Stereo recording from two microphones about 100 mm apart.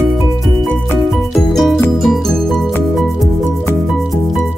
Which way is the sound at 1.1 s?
Centre (ahead or behind).